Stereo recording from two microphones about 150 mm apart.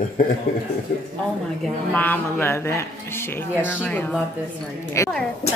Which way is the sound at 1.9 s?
15° left (ahead or behind).